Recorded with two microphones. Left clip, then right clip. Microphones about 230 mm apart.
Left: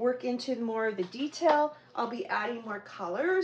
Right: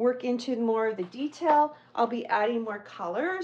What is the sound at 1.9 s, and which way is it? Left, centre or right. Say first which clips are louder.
Speech: right 8 dB; right.